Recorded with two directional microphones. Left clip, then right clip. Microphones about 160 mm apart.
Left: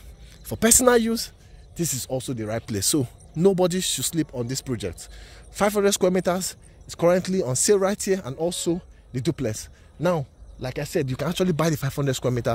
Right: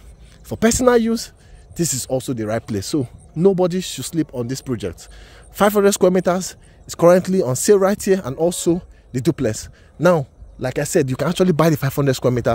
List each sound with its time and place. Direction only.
0.5 s speech: 20° right (ahead or behind)
1.8 s speech: 40° right (ahead or behind)
2.8 s speech: 10° right (ahead or behind)
5.5 s speech: 35° right (ahead or behind)
6.9 s speech: 45° right (ahead or behind)
7.2 s speech: 30° right (ahead or behind)
8.4 s speech: 55° right (ahead or behind); by 9.7 s 35° right (ahead or behind)
9.9 s speech: 50° right (ahead or behind)
11.1 s speech: 30° right (ahead or behind)